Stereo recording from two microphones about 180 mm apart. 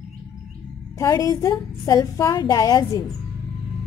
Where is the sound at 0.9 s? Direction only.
20° left (ahead or behind).